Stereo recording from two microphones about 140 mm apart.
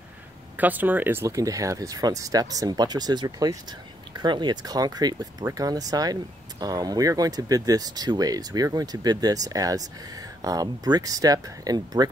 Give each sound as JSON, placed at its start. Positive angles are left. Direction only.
{"t": 0.6, "sound": "speech", "side_deg": -10}